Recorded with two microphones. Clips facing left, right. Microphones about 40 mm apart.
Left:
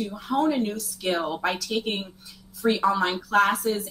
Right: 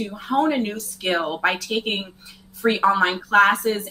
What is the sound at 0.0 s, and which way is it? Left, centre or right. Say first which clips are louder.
Speech: right 3 dB; right.